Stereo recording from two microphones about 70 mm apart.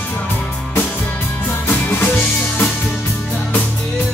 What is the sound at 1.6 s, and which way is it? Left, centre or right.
Music, left.